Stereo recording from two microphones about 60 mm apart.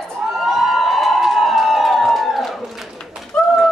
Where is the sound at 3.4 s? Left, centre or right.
Centre.